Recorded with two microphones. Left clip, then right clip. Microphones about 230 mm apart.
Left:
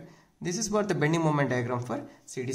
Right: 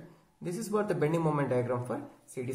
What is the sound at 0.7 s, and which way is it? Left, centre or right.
Speech, left.